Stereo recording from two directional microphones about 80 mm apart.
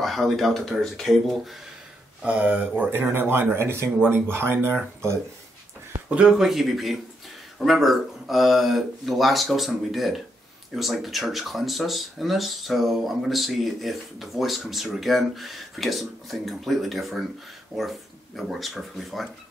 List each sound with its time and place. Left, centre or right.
0.0 s speech: centre
2.2 s speech: centre
6.0 s speech: centre